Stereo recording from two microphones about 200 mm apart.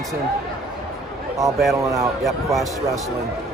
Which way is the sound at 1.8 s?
15° right (ahead or behind).